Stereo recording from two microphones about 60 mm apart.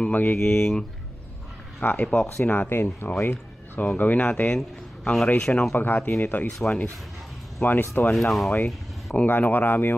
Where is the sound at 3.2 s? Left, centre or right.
Left.